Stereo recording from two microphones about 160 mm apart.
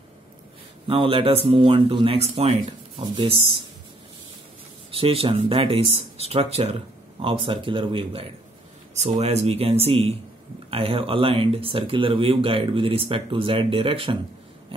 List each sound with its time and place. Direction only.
0.8 s speech: 35° right (ahead or behind)
4.9 s speech: 35° right (ahead or behind)